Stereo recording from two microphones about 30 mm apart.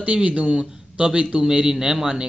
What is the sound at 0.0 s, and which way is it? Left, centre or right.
A man's voice, right.